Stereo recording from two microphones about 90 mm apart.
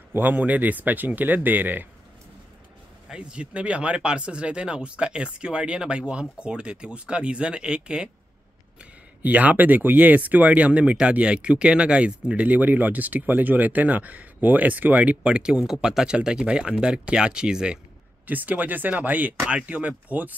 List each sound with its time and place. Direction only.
0.1 s speech: 20° right (ahead or behind)
3.1 s speech: 10° right (ahead or behind)
9.2 s speech: 15° right (ahead or behind)